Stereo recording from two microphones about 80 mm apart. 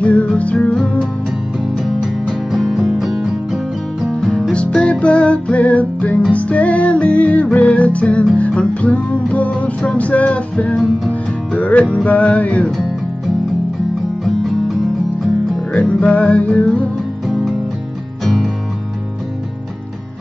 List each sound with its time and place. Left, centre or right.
0.0 s music: centre
1.8 s music: centre
4.3 s music: centre
14.2 s music: centre
15.7 s music: centre
18.2 s music: centre